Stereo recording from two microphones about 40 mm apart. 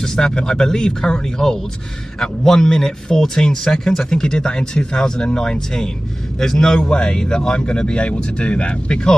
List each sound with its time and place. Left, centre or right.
0.0 s speech: centre